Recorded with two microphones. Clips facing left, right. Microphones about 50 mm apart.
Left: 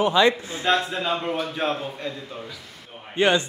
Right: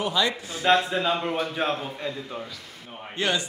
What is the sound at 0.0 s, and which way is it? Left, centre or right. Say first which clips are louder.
Speech: left 6 dB; left.